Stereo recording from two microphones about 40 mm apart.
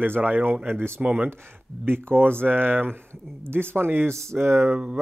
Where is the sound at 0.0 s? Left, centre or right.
Right.